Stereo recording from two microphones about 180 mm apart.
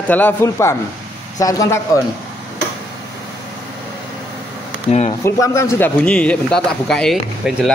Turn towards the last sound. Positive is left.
turn(degrees=0)  # may be behind; listen again after turning